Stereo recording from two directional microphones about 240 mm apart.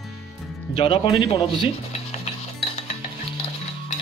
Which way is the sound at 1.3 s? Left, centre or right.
Left.